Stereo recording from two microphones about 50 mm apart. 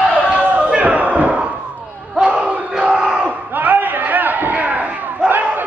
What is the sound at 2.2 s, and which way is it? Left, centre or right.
Crowd, centre.